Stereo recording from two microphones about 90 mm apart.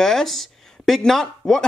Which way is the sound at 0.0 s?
5° left (ahead or behind).